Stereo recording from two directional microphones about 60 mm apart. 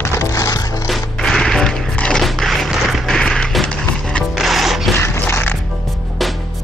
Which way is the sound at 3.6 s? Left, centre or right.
Centre.